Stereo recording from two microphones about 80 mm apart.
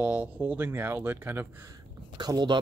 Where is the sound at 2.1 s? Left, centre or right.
Right.